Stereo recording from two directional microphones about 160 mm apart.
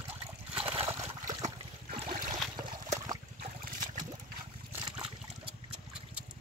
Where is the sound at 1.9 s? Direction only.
60° right (ahead or behind).